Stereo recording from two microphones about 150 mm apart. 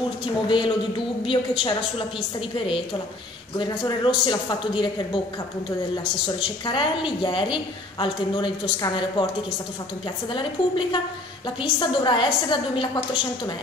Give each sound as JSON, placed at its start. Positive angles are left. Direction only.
{"t": 0.2, "sound": "a woman's voice", "side_deg": 35}
{"t": 6.2, "sound": "a woman's voice", "side_deg": 35}
{"t": 10.3, "sound": "a woman's voice", "side_deg": 35}